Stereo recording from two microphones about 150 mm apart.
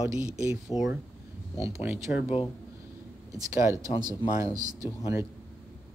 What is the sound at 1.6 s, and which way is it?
Speech, 20° right (ahead or behind).